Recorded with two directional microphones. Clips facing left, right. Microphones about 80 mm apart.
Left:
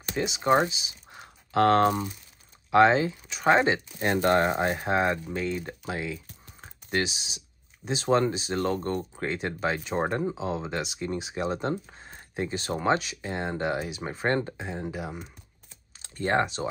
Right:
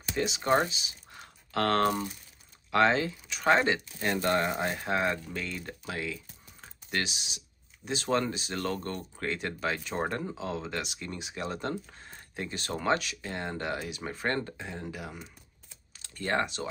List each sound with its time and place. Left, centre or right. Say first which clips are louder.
0.1 s speech: left 3 dB; centre
4.2 s speech: left 6 dB; left